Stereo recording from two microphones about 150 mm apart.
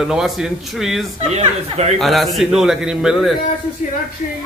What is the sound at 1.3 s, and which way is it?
Speech, 45° right (ahead or behind).